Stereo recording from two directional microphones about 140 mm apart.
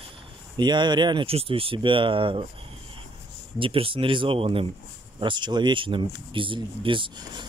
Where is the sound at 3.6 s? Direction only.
40° right (ahead or behind).